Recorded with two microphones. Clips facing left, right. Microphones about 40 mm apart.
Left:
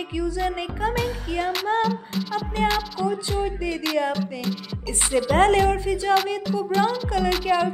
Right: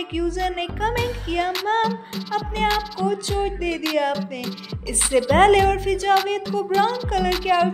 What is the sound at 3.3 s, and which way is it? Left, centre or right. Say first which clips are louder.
Music: right 2 dB; right.